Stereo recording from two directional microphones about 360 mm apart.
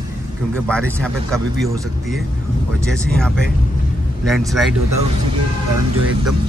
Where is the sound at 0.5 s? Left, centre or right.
Centre.